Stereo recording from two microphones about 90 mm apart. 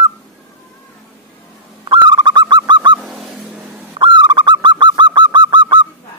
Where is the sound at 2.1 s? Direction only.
55° right (ahead or behind).